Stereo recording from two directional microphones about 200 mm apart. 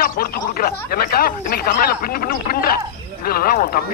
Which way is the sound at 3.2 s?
45° left (ahead or behind).